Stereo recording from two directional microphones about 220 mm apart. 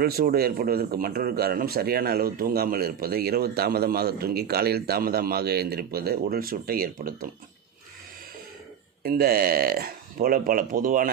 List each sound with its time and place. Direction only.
0.0 s a man's voice: 45° right (ahead or behind)
9.0 s a man's voice: 45° right (ahead or behind)